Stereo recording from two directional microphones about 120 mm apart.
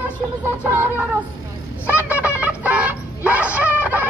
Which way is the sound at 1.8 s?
15° right (ahead or behind).